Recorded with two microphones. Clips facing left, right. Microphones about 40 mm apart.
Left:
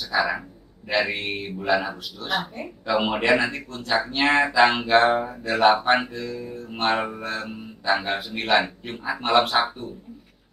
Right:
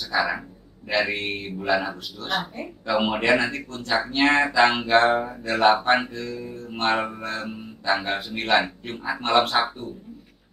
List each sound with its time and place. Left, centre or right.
0.1 s a man's voice: centre